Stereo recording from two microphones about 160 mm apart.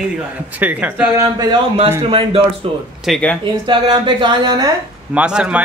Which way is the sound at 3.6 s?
30° right (ahead or behind).